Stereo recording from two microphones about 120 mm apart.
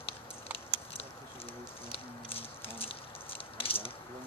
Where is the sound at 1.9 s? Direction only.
55° left (ahead or behind).